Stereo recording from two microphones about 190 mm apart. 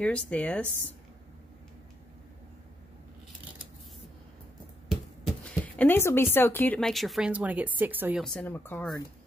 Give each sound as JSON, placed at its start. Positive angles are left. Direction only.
{"t": 0.0, "sound": "speech", "side_deg": 5}
{"t": 4.8, "sound": "speech", "side_deg": 0}
{"t": 8.2, "sound": "speech", "side_deg": 5}